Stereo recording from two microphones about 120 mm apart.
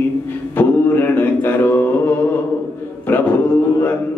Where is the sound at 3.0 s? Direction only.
15° left (ahead or behind).